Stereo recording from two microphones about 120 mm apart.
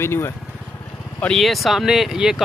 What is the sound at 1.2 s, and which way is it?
Speech, 5° left (ahead or behind).